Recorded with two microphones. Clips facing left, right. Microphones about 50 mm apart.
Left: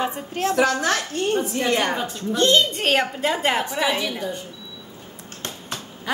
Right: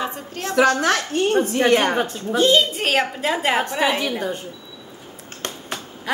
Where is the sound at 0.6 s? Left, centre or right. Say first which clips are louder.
Right 5 dB; right.